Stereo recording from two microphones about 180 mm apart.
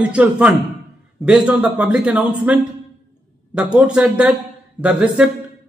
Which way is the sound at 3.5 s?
5° right (ahead or behind).